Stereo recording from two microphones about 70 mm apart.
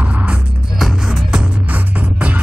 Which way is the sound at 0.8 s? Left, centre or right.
Centre.